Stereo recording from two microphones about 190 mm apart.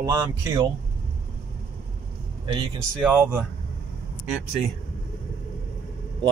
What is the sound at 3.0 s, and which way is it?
Speech, 10° right (ahead or behind).